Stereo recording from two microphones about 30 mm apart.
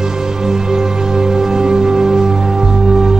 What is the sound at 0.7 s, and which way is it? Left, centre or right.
Music, centre.